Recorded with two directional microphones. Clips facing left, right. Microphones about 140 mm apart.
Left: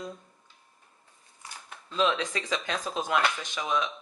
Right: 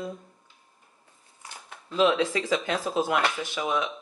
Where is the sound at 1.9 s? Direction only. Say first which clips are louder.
Right 5 dB; 20° right (ahead or behind).